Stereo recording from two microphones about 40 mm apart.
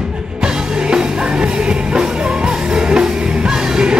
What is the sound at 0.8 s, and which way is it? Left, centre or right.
Music, right.